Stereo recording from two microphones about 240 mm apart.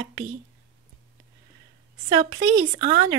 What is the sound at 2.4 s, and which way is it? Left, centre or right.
Speech, right.